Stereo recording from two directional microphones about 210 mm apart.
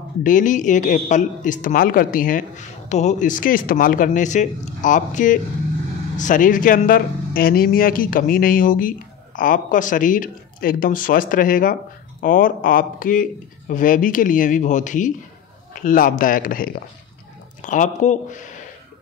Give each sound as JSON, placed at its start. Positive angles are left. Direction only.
{"t": 0.2, "sound": "speech", "side_deg": 40}